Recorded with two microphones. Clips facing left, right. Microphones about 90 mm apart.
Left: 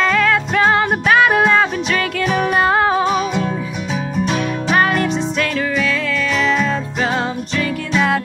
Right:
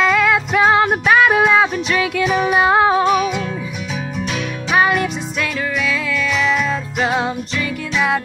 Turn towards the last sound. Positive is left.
turn(degrees=-5)  # may be behind; listen again after turning